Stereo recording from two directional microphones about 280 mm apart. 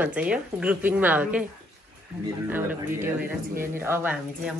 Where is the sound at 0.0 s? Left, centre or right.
Centre.